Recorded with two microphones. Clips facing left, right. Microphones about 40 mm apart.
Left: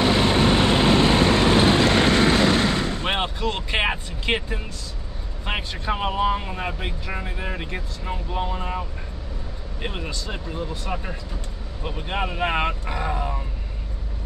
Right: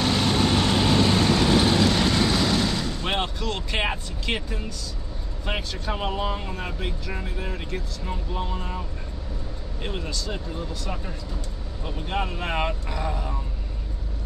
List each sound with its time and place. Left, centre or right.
0.0 s vehicle: left
3.1 s vehicle: left
5.4 s speech: left